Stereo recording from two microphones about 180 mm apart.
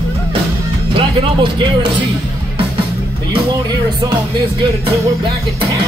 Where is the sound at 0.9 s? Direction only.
25° right (ahead or behind).